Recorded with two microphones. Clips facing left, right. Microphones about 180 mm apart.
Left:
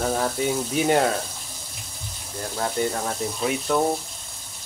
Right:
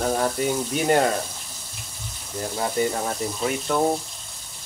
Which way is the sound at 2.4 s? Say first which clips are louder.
Right 1 dB; 10° right (ahead or behind).